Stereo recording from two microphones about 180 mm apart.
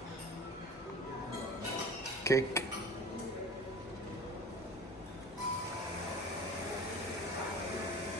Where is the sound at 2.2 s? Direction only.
15° left (ahead or behind).